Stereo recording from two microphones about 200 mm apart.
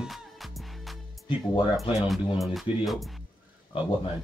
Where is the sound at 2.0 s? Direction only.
Centre (ahead or behind).